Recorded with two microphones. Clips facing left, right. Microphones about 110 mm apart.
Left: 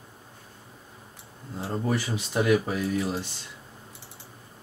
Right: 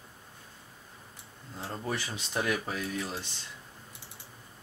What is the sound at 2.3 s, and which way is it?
Speech, 10° left (ahead or behind).